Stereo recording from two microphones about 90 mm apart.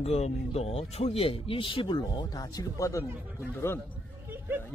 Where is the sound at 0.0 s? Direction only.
90° left; by 2.0 s 70° left (ahead or behind).